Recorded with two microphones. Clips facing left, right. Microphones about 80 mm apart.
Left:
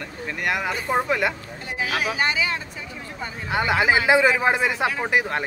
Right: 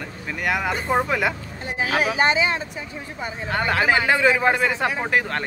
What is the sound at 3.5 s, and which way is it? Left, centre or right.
Speech, centre.